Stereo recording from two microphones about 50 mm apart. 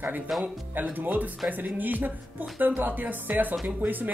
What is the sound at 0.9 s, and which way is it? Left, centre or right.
Speech, right.